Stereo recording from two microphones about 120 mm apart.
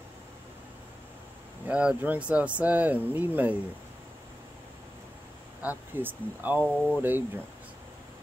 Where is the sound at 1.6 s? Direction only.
10° right (ahead or behind).